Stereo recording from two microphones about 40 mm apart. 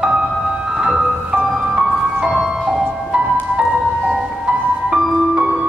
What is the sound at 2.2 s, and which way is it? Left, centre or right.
Music, centre.